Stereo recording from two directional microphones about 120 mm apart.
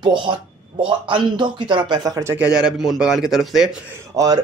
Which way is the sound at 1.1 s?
40° right (ahead or behind).